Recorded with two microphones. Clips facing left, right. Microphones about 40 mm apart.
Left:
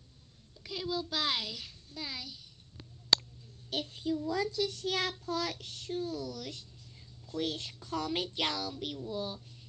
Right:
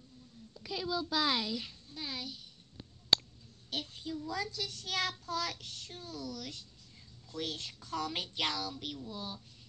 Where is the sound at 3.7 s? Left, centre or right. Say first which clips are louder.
Left 5 dB; left.